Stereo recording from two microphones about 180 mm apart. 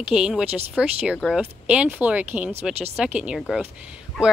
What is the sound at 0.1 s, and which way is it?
A woman's voice, 5° right (ahead or behind).